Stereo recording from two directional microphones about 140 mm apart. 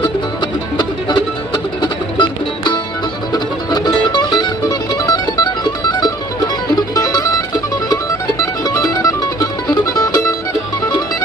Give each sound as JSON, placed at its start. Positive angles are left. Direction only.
{"t": 0.7, "sound": "music", "side_deg": 30}